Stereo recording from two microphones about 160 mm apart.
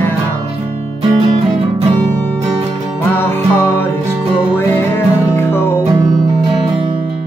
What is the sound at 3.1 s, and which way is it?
Music, 15° left (ahead or behind).